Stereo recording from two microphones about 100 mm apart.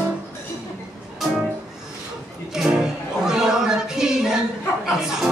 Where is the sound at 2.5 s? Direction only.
5° right (ahead or behind).